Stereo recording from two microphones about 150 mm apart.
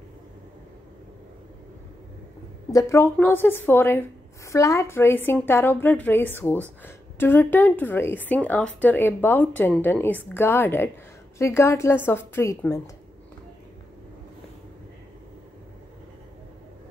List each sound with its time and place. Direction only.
2.7 s a woman's voice: 20° left (ahead or behind)